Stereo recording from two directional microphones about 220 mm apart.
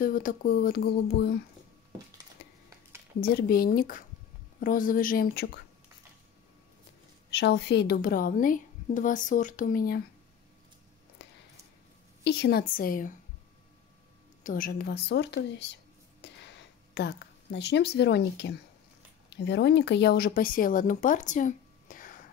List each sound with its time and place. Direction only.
0.0 s speech: 40° left (ahead or behind)
3.2 s a woman's voice: 45° left (ahead or behind)
7.2 s a woman's voice: 50° left (ahead or behind)
12.2 s speech: 50° left (ahead or behind)
14.4 s speech: 40° left (ahead or behind)